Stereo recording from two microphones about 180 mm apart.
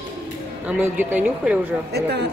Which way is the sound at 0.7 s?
10° right (ahead or behind).